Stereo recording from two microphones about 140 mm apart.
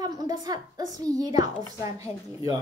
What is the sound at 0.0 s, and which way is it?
A woman's voice, 25° right (ahead or behind).